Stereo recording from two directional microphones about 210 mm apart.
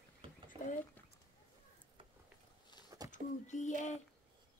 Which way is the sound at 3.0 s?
35° left (ahead or behind).